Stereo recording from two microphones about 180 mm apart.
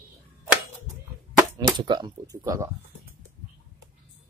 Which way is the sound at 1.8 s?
25° right (ahead or behind).